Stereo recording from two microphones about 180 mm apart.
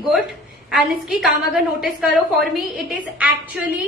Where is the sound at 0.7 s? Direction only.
Centre (ahead or behind).